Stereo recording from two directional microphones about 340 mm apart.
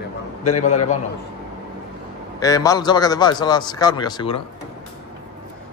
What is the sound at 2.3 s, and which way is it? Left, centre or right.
A man's voice, centre.